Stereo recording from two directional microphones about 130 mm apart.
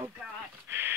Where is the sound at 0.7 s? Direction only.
20° right (ahead or behind).